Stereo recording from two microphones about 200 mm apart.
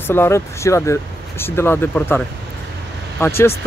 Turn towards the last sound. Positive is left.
turn(degrees=10)  # may be behind; listen again after turning